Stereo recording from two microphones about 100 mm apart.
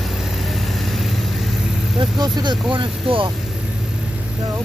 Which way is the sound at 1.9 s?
45° right (ahead or behind).